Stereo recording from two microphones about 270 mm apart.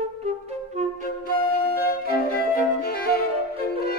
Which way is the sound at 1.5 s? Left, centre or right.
Left.